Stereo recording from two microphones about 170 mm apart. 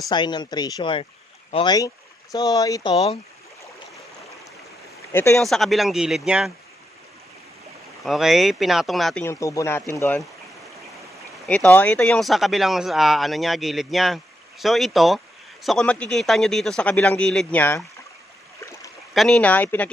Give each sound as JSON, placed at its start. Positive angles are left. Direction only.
{"t": 0.1, "sound": "speech", "side_deg": 25}
{"t": 5.1, "sound": "speech", "side_deg": 15}
{"t": 5.4, "sound": "speech", "side_deg": 0}
{"t": 8.0, "sound": "speech", "side_deg": 0}
{"t": 9.2, "sound": "speech", "side_deg": 15}
{"t": 11.4, "sound": "speech", "side_deg": 5}
{"t": 19.1, "sound": "speech", "side_deg": 5}